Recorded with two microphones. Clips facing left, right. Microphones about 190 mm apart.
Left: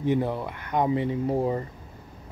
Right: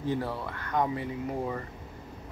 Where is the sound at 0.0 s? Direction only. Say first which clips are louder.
Left 6 dB; 20° left (ahead or behind).